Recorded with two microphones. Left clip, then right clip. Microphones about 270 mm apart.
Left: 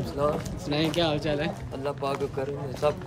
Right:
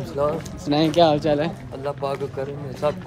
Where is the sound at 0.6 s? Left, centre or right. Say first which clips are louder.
Right 9 dB; centre.